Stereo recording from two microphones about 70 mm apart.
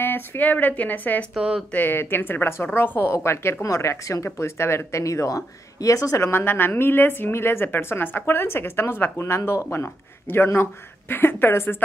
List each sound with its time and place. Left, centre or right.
0.0 s speech: left
1.3 s speech: centre
1.7 s speech: left